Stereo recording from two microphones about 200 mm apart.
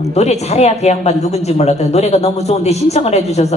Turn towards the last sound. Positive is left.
turn(degrees=35)  # may be behind; listen again after turning